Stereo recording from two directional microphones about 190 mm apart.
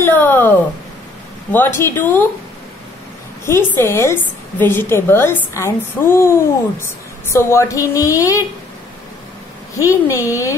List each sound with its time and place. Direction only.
0.0 s a woman's voice: 10° left (ahead or behind)
3.4 s a woman's voice: 15° left (ahead or behind)
9.8 s a woman's voice: 15° left (ahead or behind)